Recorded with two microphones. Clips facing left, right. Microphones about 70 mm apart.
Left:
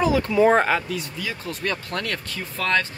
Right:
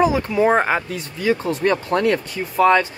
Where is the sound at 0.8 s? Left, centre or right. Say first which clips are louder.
Right 2 dB; right.